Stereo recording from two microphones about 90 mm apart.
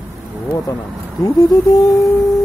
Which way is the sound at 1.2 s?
45° left (ahead or behind).